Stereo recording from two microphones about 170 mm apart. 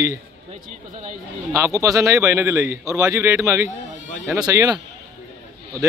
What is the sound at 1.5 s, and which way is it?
A man's voice, 20° right (ahead or behind).